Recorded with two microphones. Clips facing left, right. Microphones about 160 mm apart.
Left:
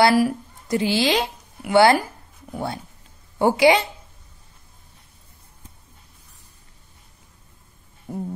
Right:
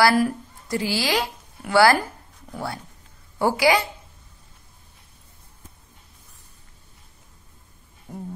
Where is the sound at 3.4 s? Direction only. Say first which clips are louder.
Left 3 dB; 25° left (ahead or behind).